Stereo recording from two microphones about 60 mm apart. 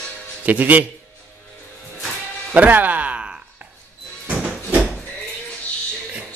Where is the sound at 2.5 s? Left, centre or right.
Right.